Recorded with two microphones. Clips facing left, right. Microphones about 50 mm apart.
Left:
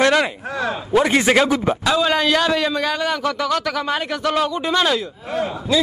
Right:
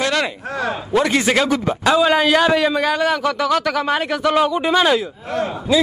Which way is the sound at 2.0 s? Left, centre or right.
Centre.